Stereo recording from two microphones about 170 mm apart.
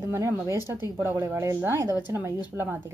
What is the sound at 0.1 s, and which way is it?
Speech, 15° right (ahead or behind).